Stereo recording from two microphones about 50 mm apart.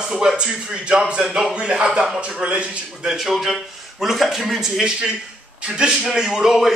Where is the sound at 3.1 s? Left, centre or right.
Centre.